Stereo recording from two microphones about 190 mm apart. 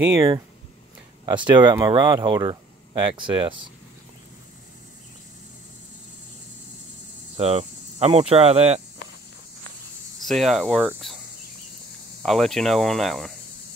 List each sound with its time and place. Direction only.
0.1 s speech: 15° right (ahead or behind)
7.3 s cricket: 35° right (ahead or behind)
10.2 s speech: centre (ahead or behind)
12.2 s speech: centre (ahead or behind)